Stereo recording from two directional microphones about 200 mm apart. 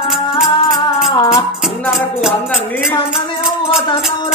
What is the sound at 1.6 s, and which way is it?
Music, centre (ahead or behind).